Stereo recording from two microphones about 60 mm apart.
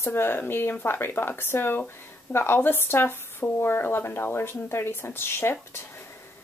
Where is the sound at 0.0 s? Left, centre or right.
Left.